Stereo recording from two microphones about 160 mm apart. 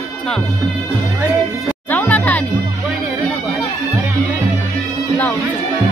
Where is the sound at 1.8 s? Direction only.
10° left (ahead or behind).